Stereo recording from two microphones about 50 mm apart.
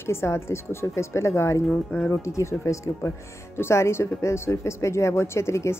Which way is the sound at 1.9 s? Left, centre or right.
Left.